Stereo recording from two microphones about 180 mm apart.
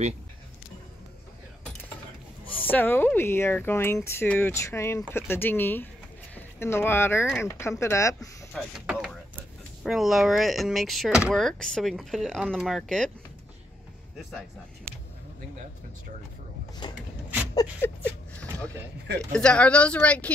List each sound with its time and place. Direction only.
2.7 s speech: 10° left (ahead or behind)
8.2 s speech: centre (ahead or behind)
16.8 s a sound: 25° left (ahead or behind)
17.8 s speech: 10° left (ahead or behind)
19.1 s speech: 5° left (ahead or behind)